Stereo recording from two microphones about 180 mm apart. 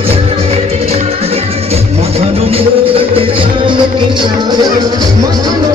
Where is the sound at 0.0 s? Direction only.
35° right (ahead or behind).